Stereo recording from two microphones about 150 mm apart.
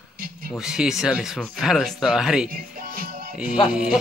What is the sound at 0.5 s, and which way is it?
Speech, 5° right (ahead or behind).